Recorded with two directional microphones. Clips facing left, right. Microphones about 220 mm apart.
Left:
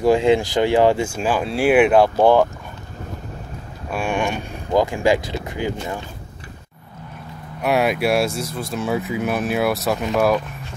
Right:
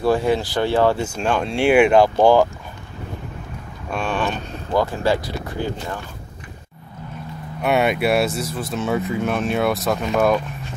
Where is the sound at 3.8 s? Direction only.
10° left (ahead or behind).